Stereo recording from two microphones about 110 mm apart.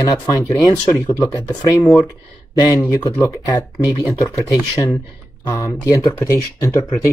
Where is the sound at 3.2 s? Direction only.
35° left (ahead or behind).